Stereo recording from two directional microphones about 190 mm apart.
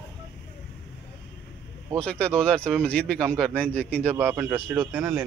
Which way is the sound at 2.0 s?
5° left (ahead or behind).